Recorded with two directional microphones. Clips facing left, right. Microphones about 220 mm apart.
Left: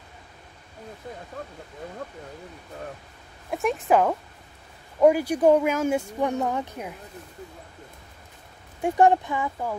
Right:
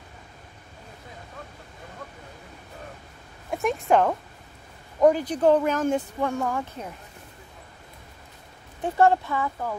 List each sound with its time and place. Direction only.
3.4 s speech: centre (ahead or behind)
6.3 s speech: 20° left (ahead or behind)
8.8 s speech: 15° left (ahead or behind)